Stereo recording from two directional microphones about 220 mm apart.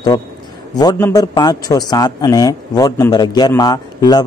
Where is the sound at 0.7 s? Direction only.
15° left (ahead or behind).